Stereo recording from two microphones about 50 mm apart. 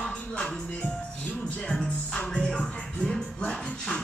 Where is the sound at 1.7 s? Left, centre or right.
Centre.